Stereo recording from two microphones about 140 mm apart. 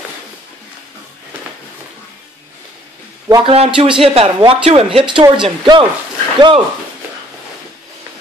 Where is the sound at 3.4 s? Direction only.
40° right (ahead or behind).